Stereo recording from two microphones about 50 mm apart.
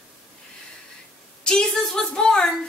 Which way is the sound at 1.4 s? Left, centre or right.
Centre.